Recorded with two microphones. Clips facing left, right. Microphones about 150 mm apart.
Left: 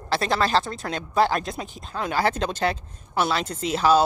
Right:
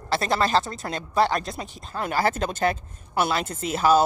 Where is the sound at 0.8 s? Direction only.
Centre (ahead or behind).